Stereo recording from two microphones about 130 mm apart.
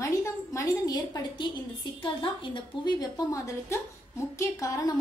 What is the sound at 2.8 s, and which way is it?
A woman's voice, 30° left (ahead or behind).